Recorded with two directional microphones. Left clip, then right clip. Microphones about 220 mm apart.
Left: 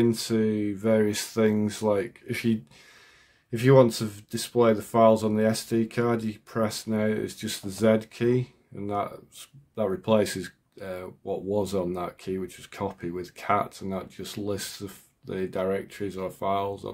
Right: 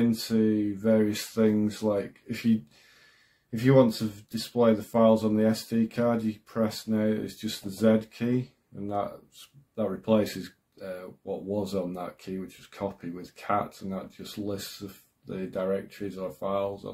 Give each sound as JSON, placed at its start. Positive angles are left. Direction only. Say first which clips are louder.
{"t": 0.1, "sound": "speech", "louder": "even", "side_deg": 30}
{"t": 3.6, "sound": "speech", "louder": "left 3 dB", "side_deg": 30}